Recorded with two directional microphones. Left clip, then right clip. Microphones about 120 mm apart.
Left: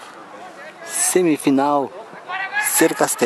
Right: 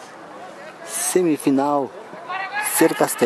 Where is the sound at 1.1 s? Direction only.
5° left (ahead or behind).